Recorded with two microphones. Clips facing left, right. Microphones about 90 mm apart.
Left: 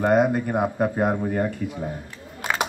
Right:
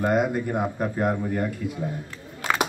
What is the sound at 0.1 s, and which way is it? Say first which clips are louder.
Speech: left 4 dB; 40° left (ahead or behind).